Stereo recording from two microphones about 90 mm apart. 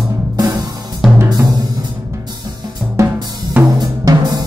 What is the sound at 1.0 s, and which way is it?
Drum, 5° right (ahead or behind).